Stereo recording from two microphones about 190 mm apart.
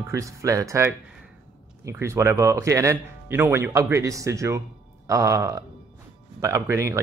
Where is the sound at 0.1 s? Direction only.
15° right (ahead or behind).